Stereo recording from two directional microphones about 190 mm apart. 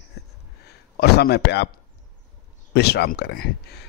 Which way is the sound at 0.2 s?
60° left (ahead or behind).